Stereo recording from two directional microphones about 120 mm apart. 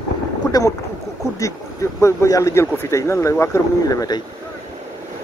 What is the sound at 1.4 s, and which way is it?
Speech, 25° left (ahead or behind).